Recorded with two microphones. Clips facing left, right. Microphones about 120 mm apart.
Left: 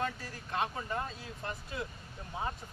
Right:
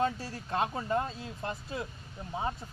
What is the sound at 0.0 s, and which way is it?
Speech, 30° right (ahead or behind).